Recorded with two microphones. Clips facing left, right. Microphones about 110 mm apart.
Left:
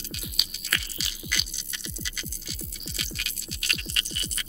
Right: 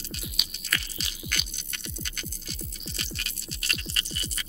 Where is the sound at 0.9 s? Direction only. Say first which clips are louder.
Left 1 dB; 50° right (ahead or behind).